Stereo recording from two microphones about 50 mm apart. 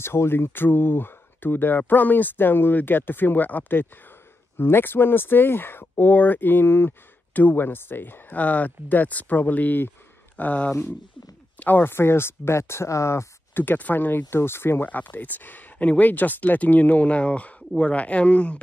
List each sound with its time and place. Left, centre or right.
0.0 s speech: left
4.6 s speech: left
7.3 s speech: left
11.9 s speech: left
13.6 s speech: left
14.9 s speech: left